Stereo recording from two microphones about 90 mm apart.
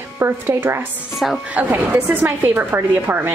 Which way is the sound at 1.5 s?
20° right (ahead or behind).